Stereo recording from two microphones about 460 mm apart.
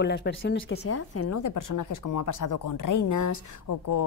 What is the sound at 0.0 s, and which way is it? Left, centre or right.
Speech, left.